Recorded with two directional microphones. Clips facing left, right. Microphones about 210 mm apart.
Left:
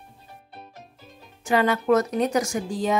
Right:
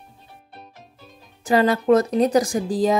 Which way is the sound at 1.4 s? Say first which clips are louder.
Right 3 dB; 35° right (ahead or behind).